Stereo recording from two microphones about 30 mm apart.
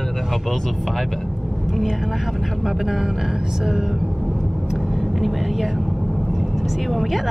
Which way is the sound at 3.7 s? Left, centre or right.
Centre.